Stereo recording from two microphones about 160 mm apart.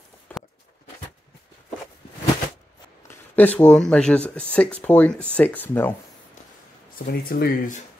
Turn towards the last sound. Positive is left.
turn(degrees=70)  # may be behind; listen again after turning